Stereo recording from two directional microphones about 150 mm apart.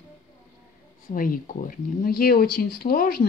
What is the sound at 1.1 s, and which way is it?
Speech, 70° left (ahead or behind).